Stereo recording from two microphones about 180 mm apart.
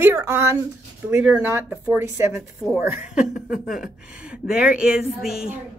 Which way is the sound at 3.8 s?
5° right (ahead or behind).